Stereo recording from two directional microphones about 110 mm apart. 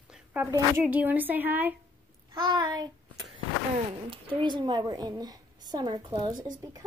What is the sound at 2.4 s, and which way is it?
Speech, 40° right (ahead or behind).